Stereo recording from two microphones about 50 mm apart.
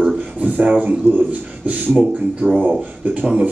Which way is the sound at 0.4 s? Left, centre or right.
Right.